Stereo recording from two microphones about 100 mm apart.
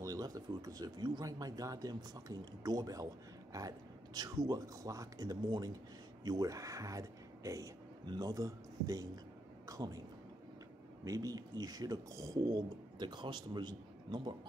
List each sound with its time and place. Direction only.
0.0 s speech: 35° right (ahead or behind)
11.1 s speech: 35° right (ahead or behind)